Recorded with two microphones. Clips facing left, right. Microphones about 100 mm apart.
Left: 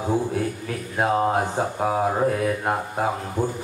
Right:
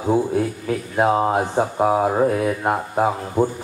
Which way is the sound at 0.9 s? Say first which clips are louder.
Right 3 dB; 20° right (ahead or behind).